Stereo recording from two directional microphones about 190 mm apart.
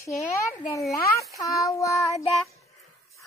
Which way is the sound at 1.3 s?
20° left (ahead or behind).